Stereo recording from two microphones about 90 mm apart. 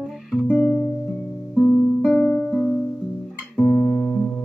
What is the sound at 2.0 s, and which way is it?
Music, 5° left (ahead or behind).